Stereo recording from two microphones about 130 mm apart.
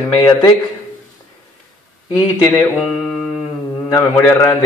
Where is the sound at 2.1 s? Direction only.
20° left (ahead or behind).